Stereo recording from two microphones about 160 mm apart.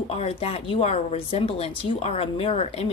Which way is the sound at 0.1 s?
40° left (ahead or behind).